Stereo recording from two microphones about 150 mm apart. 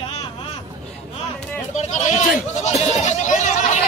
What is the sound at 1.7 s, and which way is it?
Bleat, 55° left (ahead or behind).